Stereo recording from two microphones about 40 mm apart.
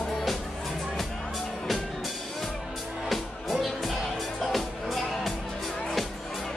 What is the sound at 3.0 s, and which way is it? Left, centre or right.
Music, centre.